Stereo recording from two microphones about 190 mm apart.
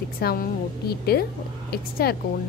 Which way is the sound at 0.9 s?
55° left (ahead or behind).